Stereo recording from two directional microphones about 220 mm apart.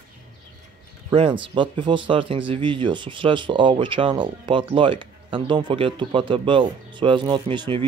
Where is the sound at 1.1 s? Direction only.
25° right (ahead or behind).